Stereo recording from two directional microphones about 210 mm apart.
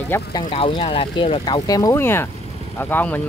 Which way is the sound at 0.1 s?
15° left (ahead or behind).